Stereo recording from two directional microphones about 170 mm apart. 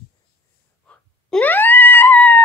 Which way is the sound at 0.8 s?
10° left (ahead or behind).